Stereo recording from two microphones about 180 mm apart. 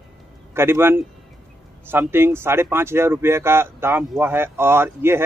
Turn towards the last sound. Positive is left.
turn(degrees=-15)  # may be behind; listen again after turning